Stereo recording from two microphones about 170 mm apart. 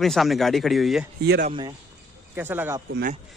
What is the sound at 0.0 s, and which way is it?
Speech, centre (ahead or behind).